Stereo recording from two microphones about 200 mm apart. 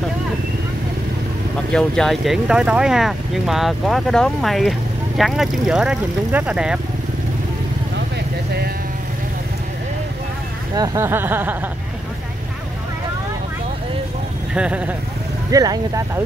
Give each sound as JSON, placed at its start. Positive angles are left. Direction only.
{"t": 1.7, "sound": "speech", "side_deg": 5}
{"t": 10.7, "sound": "speech", "side_deg": -15}
{"t": 14.5, "sound": "speech", "side_deg": -5}
{"t": 15.5, "sound": "speech", "side_deg": -15}